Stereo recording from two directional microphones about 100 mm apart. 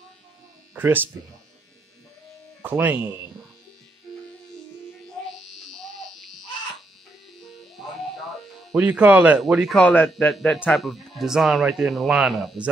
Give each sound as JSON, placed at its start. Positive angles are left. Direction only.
{"t": 0.7, "sound": "speech", "side_deg": -20}
{"t": 2.6, "sound": "speech", "side_deg": -20}
{"t": 5.4, "sound": "electric shaver", "side_deg": 0}
{"t": 7.4, "sound": "music", "side_deg": 0}
{"t": 8.7, "sound": "speech", "side_deg": -10}
{"t": 9.8, "sound": "a man's voice", "side_deg": 10}